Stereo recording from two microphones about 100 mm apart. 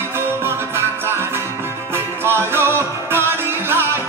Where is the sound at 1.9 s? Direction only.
25° right (ahead or behind).